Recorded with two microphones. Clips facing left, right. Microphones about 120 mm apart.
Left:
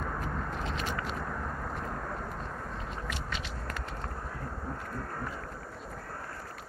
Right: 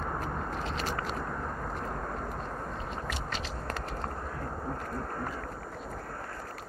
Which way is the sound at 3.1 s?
35° right (ahead or behind).